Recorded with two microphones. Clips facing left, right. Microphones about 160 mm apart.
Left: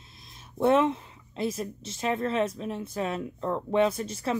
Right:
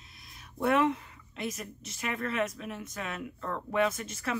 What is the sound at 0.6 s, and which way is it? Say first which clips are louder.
A woman's voice: left 4 dB; 25° left (ahead or behind).